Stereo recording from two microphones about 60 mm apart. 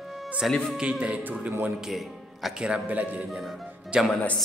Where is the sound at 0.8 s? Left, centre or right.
Centre.